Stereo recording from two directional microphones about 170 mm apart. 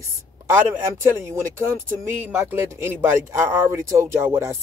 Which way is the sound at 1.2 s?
15° right (ahead or behind).